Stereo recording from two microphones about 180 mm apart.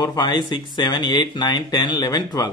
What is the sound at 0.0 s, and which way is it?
Speech, 20° left (ahead or behind).